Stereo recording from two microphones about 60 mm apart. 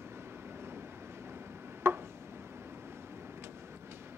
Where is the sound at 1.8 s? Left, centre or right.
Right.